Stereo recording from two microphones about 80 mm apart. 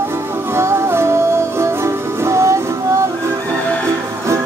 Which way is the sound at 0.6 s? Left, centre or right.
Right.